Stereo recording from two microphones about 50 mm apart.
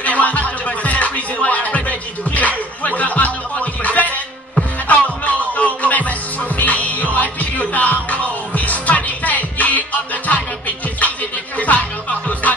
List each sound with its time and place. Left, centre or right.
0.0 s music: left